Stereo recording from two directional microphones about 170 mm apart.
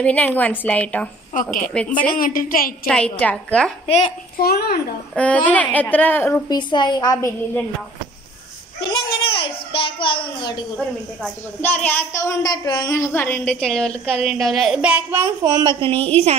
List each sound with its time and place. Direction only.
0.0 s a woman's voice: 10° left (ahead or behind)
2.1 s a woman's voice: 55° left (ahead or behind)
2.9 s a woman's voice: 5° left (ahead or behind)
3.8 s a child's voice: 35° left (ahead or behind)
4.4 s a woman's voice: 65° left (ahead or behind)
5.1 s a woman's voice: 10° left (ahead or behind)
6.5 s a woman's voice: 25° left (ahead or behind)
8.9 s a sound: 30° left (ahead or behind)
11.6 s a woman's voice: 10° left (ahead or behind); by 15.7 s 20° right (ahead or behind)
16.0 s a woman's voice: 10° left (ahead or behind)